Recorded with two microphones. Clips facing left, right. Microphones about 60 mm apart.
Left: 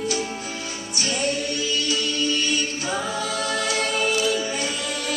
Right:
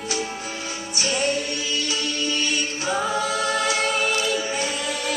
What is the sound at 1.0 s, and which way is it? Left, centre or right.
Music, right.